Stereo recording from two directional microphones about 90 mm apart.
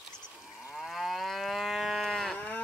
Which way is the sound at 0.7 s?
Centre (ahead or behind).